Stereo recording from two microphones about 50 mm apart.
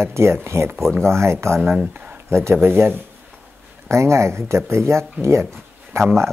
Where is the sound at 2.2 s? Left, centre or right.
Right.